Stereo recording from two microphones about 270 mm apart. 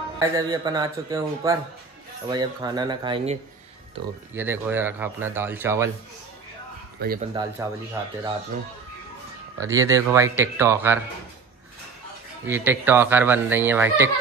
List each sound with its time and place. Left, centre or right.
0.2 s speech: centre
7.0 s speech: right
7.3 s speech: centre
9.6 s speech: centre
12.4 s speech: centre